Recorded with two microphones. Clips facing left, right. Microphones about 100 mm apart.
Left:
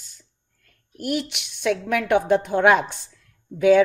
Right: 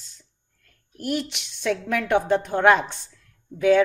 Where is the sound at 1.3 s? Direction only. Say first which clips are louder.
Left 3 dB; 65° left (ahead or behind).